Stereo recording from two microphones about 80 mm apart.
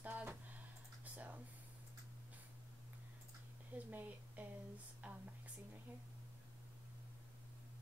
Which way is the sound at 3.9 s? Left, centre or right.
Right.